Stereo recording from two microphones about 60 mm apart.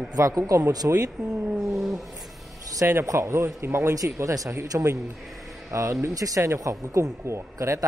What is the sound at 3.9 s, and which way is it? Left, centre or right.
A man's voice, right.